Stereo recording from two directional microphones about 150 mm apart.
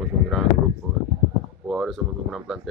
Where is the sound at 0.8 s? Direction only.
Centre (ahead or behind).